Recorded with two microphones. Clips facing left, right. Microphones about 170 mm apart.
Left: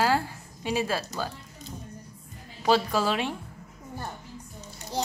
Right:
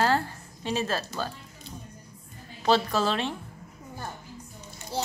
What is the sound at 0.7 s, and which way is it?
Speech, 10° left (ahead or behind).